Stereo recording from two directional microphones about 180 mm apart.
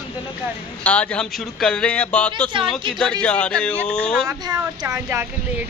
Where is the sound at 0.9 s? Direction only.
5° left (ahead or behind).